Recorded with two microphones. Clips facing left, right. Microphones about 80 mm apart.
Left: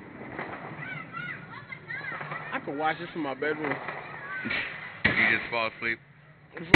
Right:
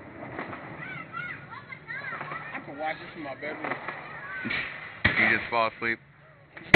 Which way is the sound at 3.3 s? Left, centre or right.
Left.